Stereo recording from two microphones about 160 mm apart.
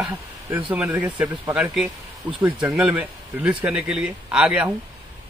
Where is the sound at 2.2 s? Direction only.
30° right (ahead or behind).